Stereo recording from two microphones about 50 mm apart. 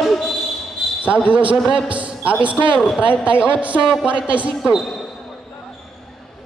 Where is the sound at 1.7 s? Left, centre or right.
Right.